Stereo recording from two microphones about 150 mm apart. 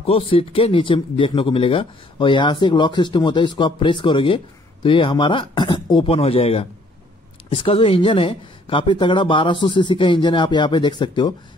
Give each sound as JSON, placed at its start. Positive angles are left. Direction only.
{"t": 0.0, "sound": "speech", "side_deg": 40}